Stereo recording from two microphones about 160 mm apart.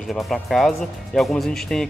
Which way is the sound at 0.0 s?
Centre (ahead or behind).